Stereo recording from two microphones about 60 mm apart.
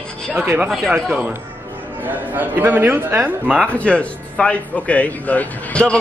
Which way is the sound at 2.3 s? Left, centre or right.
Right.